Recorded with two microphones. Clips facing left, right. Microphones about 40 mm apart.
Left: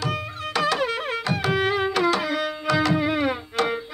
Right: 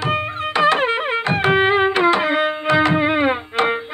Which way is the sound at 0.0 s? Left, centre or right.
Right.